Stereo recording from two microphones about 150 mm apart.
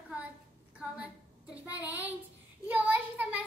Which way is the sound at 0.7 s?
5° right (ahead or behind).